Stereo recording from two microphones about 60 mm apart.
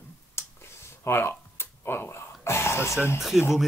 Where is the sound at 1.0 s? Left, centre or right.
Left.